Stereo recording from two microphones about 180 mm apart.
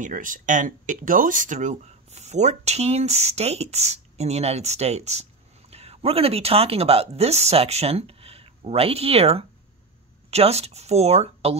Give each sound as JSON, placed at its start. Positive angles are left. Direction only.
{"t": 0.0, "sound": "speech", "side_deg": -50}